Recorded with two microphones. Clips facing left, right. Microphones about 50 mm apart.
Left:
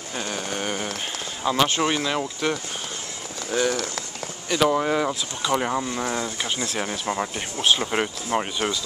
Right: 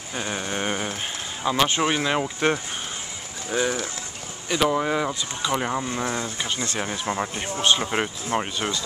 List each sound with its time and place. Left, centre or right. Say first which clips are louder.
0.2 s a sound: right 2 dB; right
1.4 s speech: even; centre
3.4 s speech: left 1 dB; centre
4.6 s speech: left 1 dB; centre